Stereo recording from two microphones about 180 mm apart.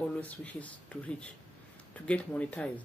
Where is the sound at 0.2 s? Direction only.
10° left (ahead or behind).